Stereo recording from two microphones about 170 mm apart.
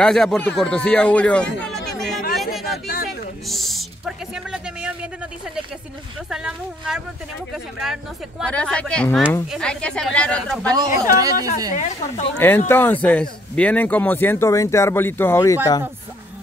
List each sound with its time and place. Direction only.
0.0 s a man's voice: 5° left (ahead or behind)
2.0 s chatter: centre (ahead or behind)
3.4 s a man's voice: centre (ahead or behind)
6.3 s a man's voice: 5° right (ahead or behind)
10.7 s speech: 20° right (ahead or behind)
11.7 s speech: 45° left (ahead or behind)
12.4 s speech: 10° left (ahead or behind)